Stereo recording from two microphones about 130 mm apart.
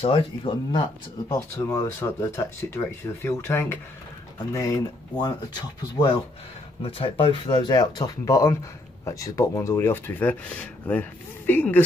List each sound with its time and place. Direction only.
0.0 s speech: 40° left (ahead or behind)
1.3 s speech: 25° left (ahead or behind)
6.8 s speech: 45° left (ahead or behind); by 11.8 s 15° left (ahead or behind)